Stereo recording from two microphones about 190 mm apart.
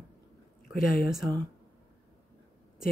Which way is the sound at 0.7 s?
50° left (ahead or behind).